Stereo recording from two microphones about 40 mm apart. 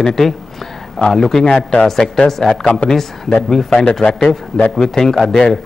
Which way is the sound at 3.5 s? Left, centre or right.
Centre.